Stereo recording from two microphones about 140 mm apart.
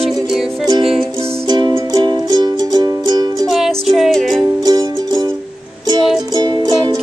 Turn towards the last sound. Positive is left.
turn(degrees=-30)  # may be behind; listen again after turning